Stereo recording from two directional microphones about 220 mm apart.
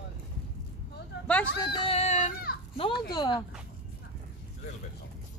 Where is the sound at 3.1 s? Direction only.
20° left (ahead or behind).